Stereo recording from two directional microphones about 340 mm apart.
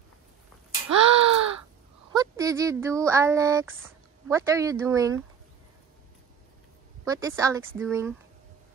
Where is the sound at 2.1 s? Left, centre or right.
Centre.